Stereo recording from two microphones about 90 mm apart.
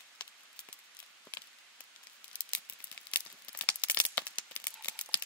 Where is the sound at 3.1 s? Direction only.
15° left (ahead or behind).